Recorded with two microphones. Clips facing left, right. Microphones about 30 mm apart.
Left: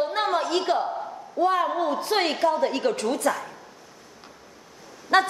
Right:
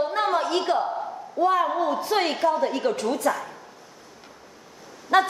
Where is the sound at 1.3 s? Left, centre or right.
Left.